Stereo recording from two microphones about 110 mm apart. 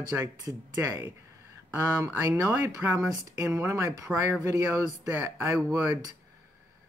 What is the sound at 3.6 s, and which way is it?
Speech, 25° right (ahead or behind).